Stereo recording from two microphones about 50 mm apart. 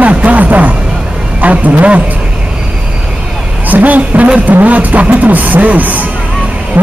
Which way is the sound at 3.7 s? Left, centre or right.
Right.